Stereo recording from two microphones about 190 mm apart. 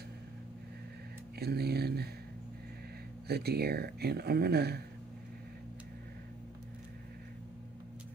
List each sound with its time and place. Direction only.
1.4 s speech: 55° right (ahead or behind)
3.3 s speech: 55° right (ahead or behind)